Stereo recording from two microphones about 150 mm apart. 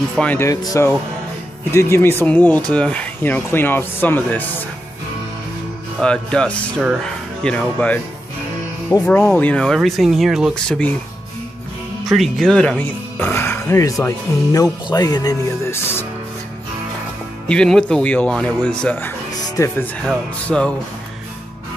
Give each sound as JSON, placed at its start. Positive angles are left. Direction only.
{"t": 0.2, "sound": "speech", "side_deg": 10}
{"t": 5.9, "sound": "speech", "side_deg": 5}
{"t": 6.8, "sound": "speech", "side_deg": -5}
{"t": 7.4, "sound": "speech", "side_deg": 10}
{"t": 9.0, "sound": "speech", "side_deg": 10}
{"t": 12.1, "sound": "speech", "side_deg": 0}
{"t": 17.5, "sound": "speech", "side_deg": 5}